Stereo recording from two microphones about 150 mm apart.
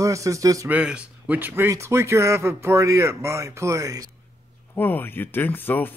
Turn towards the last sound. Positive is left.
turn(degrees=15)  # may be behind; listen again after turning